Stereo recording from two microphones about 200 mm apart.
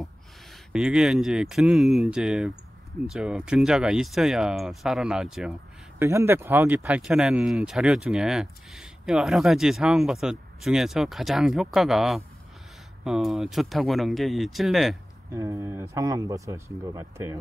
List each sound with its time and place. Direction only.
0.7 s speech: 5° right (ahead or behind)
15.3 s speech: 15° right (ahead or behind)